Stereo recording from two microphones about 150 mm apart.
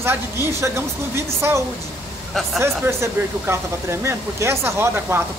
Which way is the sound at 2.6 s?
15° right (ahead or behind).